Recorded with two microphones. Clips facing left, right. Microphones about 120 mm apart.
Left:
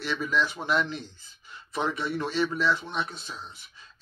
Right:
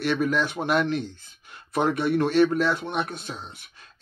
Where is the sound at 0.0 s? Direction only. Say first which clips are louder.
Right 4 dB; 55° right (ahead or behind).